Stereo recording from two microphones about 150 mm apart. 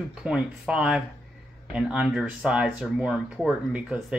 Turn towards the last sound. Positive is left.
turn(degrees=-5)  # may be behind; listen again after turning